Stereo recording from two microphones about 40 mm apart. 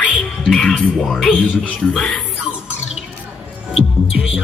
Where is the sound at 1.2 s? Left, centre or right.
Left.